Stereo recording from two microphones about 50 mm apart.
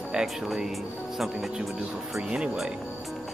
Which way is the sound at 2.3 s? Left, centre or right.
Centre.